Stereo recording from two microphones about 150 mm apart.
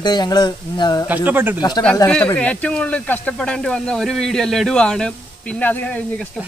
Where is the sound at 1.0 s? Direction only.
10° right (ahead or behind).